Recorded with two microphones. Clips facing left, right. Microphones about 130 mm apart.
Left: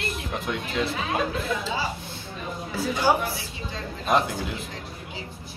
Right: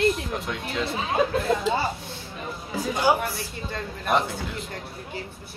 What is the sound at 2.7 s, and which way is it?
Speech, 15° right (ahead or behind).